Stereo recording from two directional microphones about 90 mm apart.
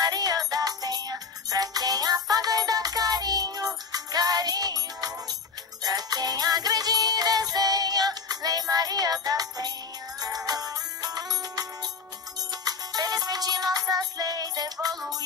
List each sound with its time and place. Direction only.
0.0 s music: 45° right (ahead or behind)